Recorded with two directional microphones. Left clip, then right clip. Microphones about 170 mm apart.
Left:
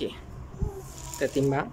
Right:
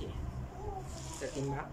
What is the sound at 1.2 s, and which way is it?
Frying, 70° left (ahead or behind).